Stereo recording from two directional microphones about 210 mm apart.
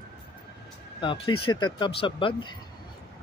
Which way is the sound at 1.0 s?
20° left (ahead or behind).